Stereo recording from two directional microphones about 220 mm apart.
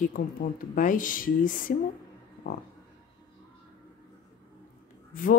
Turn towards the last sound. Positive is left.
turn(degrees=40)  # may be behind; listen again after turning